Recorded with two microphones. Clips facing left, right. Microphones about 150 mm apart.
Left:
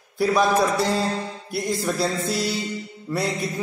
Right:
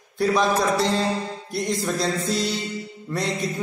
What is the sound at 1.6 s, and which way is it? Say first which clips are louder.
Speech: left 1 dB; 5° left (ahead or behind).